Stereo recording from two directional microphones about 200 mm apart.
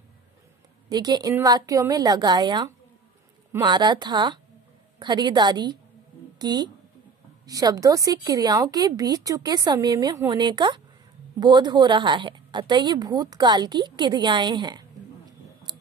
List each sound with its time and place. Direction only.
0.8 s a woman's voice: 20° right (ahead or behind)